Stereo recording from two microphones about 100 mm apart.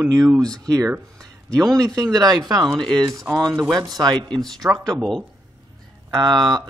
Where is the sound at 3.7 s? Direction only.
45° right (ahead or behind).